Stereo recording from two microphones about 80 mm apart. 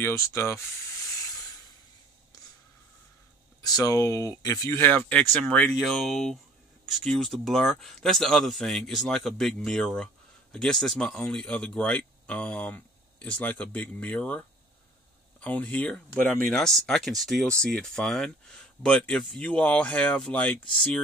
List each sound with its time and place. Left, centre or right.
0.0 s speech: left
3.6 s speech: left
4.6 s speech: left
5.9 s speech: centre
15.4 s speech: centre
16.4 s speech: centre